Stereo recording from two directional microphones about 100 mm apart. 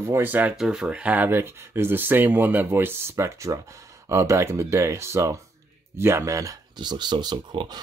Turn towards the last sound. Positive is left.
turn(degrees=-50)  # may be behind; listen again after turning